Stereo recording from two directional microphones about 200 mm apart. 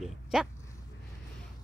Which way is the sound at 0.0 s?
Centre (ahead or behind).